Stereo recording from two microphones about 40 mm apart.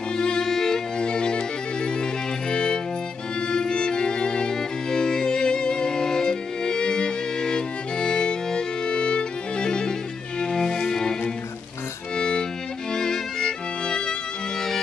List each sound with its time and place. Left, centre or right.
0.1 s violin: left
0.5 s violin: centre
0.9 s bagpipes: left
2.5 s music: centre
12.2 s music: left